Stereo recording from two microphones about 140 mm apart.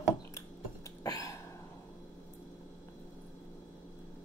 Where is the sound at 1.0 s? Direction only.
25° left (ahead or behind).